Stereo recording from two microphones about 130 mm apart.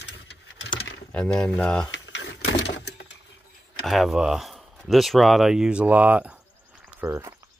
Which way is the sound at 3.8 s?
Centre (ahead or behind).